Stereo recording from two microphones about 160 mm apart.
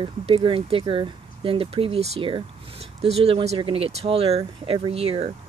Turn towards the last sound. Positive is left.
turn(degrees=-40)  # may be behind; listen again after turning